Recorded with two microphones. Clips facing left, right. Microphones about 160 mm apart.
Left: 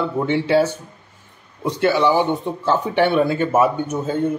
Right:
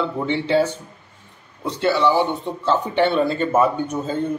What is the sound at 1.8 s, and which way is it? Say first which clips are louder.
A man's voice: left 1 dB; 15° left (ahead or behind).